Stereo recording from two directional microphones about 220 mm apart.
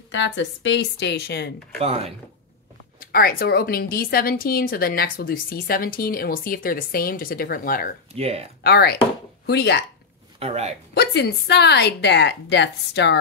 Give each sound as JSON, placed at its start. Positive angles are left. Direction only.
{"t": 0.1, "sound": "a woman's voice", "side_deg": 55}
{"t": 1.8, "sound": "speech", "side_deg": -30}
{"t": 3.0, "sound": "a woman's voice", "side_deg": 45}
{"t": 8.1, "sound": "speech", "side_deg": -25}
{"t": 8.6, "sound": "a woman's voice", "side_deg": 45}
{"t": 10.4, "sound": "speech", "side_deg": -30}
{"t": 11.0, "sound": "a woman's voice", "side_deg": 50}